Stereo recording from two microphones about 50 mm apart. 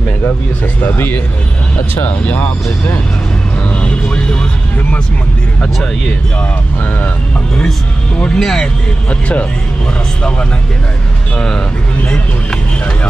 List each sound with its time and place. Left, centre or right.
0.9 s speech: left
3.7 s vehicle: left
8.4 s speech: centre
9.1 s speech: left
12.0 s speech: left